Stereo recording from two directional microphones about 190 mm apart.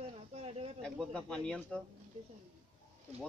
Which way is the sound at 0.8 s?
5° left (ahead or behind).